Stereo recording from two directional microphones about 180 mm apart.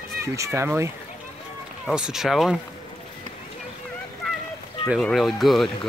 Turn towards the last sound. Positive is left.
turn(degrees=0)  # may be behind; listen again after turning